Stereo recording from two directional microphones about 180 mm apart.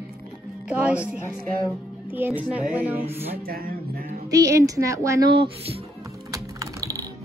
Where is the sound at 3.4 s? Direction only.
55° right (ahead or behind).